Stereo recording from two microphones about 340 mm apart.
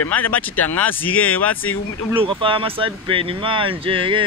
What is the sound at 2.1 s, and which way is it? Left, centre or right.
Speech, centre.